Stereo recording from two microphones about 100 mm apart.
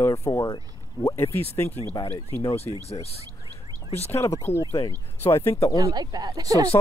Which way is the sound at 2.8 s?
90° left.